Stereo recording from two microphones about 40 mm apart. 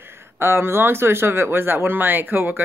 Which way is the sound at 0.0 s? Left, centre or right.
Right.